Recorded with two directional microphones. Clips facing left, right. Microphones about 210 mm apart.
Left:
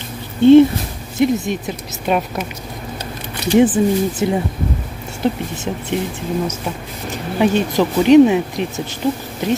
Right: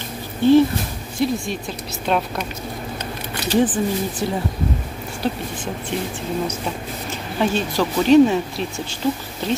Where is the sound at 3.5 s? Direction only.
10° left (ahead or behind).